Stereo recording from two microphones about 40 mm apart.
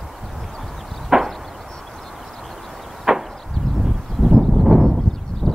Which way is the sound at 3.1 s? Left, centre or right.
Centre.